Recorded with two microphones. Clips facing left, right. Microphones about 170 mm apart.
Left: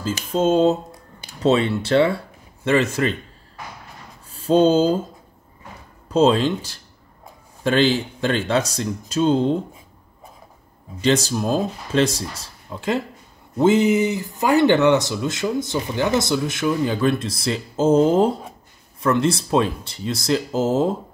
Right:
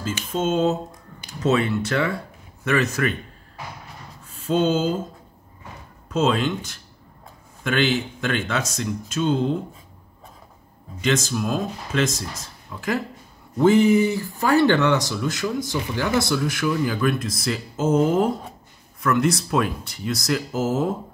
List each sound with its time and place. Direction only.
0.0 s speech: 35° left (ahead or behind)
4.3 s speech: 35° left (ahead or behind)
6.0 s speech: 35° left (ahead or behind)
11.0 s speech: 35° left (ahead or behind)